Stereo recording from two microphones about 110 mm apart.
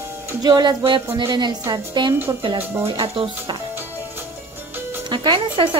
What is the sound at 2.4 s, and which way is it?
Speech, 55° right (ahead or behind).